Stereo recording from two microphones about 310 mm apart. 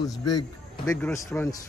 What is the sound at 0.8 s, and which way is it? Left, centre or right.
Speech, centre.